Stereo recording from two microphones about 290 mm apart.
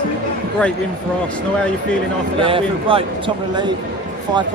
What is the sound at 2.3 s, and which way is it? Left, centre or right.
Speech, centre.